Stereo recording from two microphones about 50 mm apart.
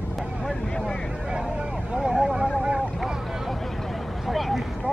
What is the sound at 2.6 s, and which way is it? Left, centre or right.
Boat, centre.